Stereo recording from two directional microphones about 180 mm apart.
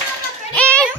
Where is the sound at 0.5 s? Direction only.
10° left (ahead or behind).